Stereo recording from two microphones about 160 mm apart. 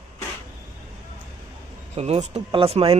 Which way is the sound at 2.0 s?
45° right (ahead or behind).